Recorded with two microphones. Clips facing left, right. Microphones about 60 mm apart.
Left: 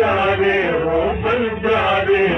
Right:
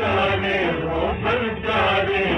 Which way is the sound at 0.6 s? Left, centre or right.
Left.